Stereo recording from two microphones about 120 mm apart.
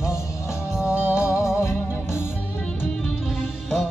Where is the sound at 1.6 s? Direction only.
20° left (ahead or behind).